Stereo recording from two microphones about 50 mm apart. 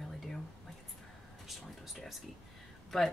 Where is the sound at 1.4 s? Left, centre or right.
Centre.